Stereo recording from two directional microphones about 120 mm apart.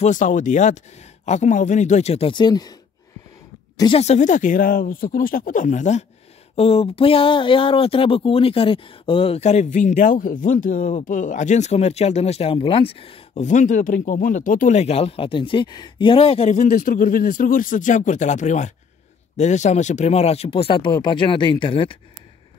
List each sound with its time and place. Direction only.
0.0 s speech: 90° left
1.2 s speech: 75° left (ahead or behind); by 2.3 s 60° left (ahead or behind)
2.3 s speech: 35° left (ahead or behind)
3.9 s speech: 65° left (ahead or behind); by 6.0 s 80° left
6.5 s speech: 55° left (ahead or behind)
13.4 s speech: 90° left; by 16.5 s 55° left (ahead or behind)
16.5 s speech: 90° left; by 21.9 s 45° left (ahead or behind)